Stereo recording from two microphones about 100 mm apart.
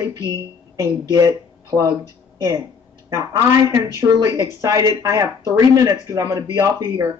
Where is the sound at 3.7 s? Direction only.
35° right (ahead or behind).